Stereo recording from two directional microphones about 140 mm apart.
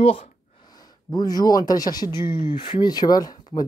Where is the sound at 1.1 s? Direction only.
25° left (ahead or behind).